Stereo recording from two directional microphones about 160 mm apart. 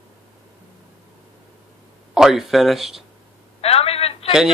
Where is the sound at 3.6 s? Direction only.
40° left (ahead or behind).